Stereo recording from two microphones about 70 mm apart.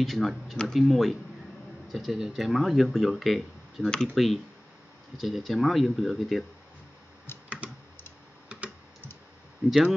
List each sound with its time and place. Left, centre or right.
0.0 s speech: centre
7.3 s computer keyboard: left
9.7 s speech: centre